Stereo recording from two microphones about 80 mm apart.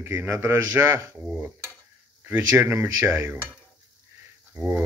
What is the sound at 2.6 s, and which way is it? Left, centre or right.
Speech, right.